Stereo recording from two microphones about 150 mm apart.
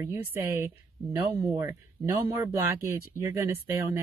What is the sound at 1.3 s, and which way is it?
Speech, 25° right (ahead or behind).